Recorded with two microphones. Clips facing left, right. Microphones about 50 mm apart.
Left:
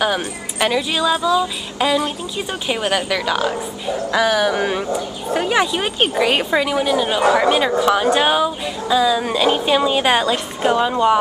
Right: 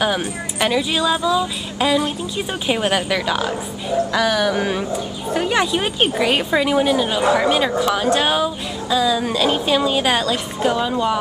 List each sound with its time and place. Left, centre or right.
0.0 s a woman's voice: centre
7.3 s a woman's voice: centre